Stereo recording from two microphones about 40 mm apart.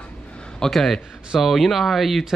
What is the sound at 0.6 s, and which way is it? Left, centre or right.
Speech, centre.